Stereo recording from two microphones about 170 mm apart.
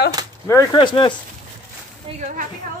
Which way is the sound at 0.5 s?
20° left (ahead or behind).